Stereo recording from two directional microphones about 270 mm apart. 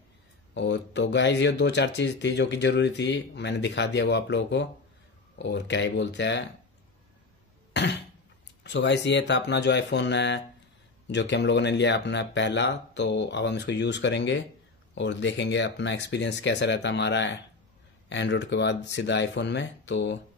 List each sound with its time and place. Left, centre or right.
0.6 s speech: left
7.7 s cough: left
8.6 s speech: left